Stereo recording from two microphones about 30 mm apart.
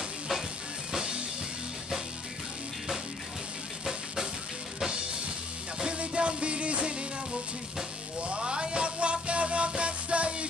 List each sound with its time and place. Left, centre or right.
5.9 s music: right
8.2 s music: right